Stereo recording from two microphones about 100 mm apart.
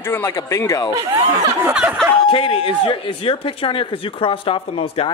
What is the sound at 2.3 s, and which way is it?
Speech, 65° left (ahead or behind).